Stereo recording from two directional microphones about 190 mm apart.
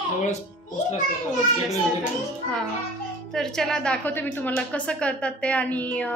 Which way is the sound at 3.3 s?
5° left (ahead or behind).